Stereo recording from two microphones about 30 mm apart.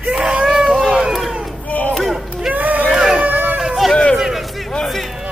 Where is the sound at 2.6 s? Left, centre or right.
Right.